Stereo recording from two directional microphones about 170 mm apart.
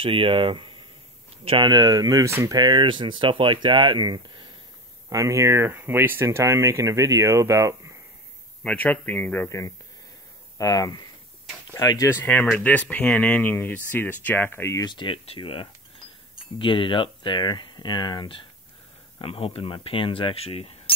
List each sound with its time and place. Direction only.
0.0 s speech: 30° right (ahead or behind)
8.6 s speech: 10° left (ahead or behind); by 20.7 s 35° left (ahead or behind)